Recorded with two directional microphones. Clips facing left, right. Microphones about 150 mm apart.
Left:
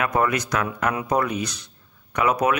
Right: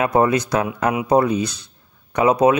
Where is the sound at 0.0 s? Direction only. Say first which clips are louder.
Right 5 dB; 30° right (ahead or behind).